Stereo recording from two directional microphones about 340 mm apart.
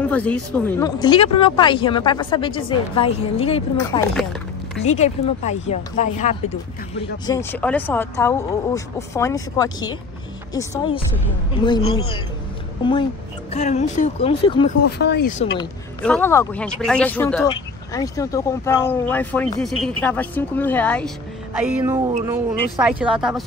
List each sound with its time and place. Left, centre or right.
0.1 s speech: centre
4.1 s a sound: centre
4.8 s speech: centre
7.0 s speech: centre
11.6 s speech: centre
13.5 s speech: centre
15.0 s speech: left
15.6 s speech: centre